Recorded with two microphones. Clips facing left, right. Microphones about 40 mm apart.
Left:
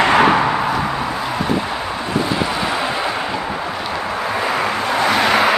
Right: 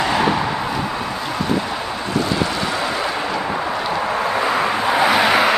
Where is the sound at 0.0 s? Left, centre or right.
Left.